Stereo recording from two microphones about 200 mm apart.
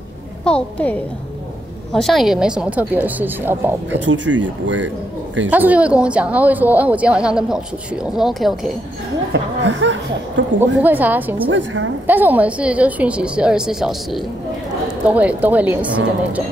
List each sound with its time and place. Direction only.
0.5 s a woman's voice: 5° left (ahead or behind); by 4.0 s 10° right (ahead or behind)
4.0 s speech: 65° right (ahead or behind)
5.5 s speech: 5° right (ahead or behind)
9.3 s speech: 65° right (ahead or behind)
10.8 s speech: 10° right (ahead or behind)
11.5 s speech: 75° right (ahead or behind)
12.1 s speech: 10° right (ahead or behind)